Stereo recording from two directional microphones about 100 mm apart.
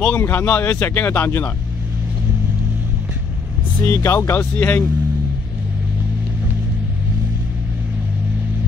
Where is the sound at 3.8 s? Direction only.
30° left (ahead or behind).